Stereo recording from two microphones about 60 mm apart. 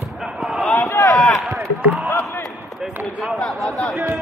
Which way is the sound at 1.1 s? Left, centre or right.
Centre.